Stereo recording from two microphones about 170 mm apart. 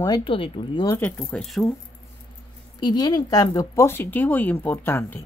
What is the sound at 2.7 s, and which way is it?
Speech, 25° left (ahead or behind).